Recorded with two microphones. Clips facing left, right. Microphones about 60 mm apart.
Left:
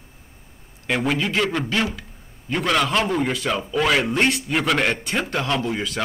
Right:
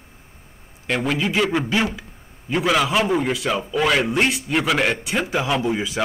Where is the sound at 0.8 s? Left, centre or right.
Centre.